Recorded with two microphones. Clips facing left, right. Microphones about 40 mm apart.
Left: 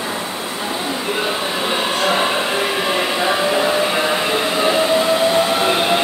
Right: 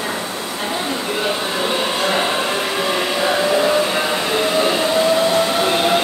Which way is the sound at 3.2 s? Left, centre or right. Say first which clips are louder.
Right 2 dB; centre.